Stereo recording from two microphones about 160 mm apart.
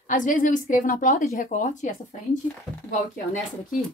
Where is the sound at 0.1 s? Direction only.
55° left (ahead or behind).